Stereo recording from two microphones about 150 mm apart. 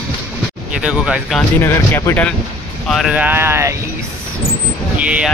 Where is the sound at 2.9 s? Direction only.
5° right (ahead or behind).